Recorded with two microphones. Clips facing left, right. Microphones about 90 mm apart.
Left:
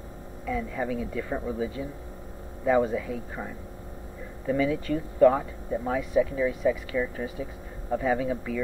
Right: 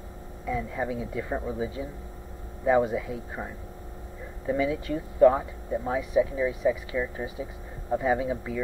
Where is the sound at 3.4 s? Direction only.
10° left (ahead or behind).